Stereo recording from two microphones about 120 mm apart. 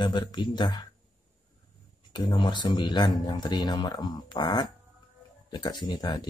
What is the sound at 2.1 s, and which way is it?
A man's voice, 40° left (ahead or behind).